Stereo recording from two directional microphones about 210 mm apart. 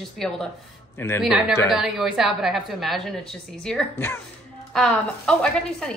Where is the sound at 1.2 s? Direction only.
Centre (ahead or behind).